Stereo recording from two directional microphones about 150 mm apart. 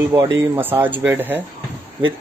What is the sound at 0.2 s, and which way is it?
Speech, 15° right (ahead or behind).